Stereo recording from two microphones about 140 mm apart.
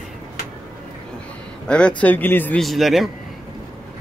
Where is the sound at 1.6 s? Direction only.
5° left (ahead or behind).